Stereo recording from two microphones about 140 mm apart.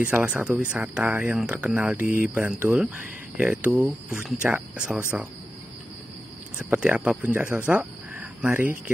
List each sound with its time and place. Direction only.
0.0 s speech: 10° right (ahead or behind)
2.0 s speech: 75° left (ahead or behind)
2.3 s speech: 10° right (ahead or behind)
6.7 s speech: 10° right (ahead or behind)